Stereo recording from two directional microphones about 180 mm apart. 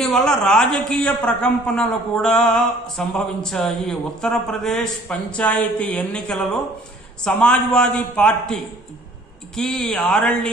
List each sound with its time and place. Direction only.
0.0 s a man's voice: centre (ahead or behind)
9.6 s a man's voice: 5° left (ahead or behind)